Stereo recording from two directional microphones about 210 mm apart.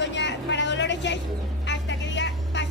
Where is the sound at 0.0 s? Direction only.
55° left (ahead or behind).